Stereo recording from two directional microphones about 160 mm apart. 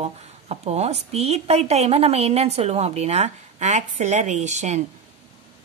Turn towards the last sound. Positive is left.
turn(degrees=-45)  # may be behind; listen again after turning